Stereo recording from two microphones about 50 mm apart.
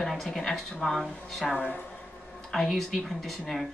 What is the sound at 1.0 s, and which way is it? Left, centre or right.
Speech, centre.